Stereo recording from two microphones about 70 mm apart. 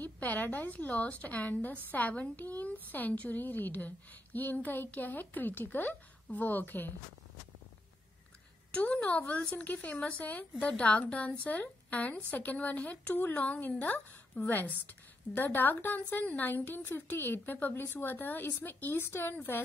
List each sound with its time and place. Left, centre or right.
0.0 s speech: left
8.7 s a woman's voice: centre